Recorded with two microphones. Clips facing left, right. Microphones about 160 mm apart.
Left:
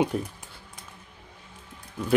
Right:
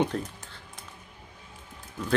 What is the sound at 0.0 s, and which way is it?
Speech, 10° left (ahead or behind).